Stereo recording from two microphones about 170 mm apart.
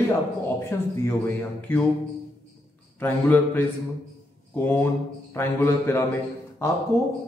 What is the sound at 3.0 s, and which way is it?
Speech, 10° left (ahead or behind).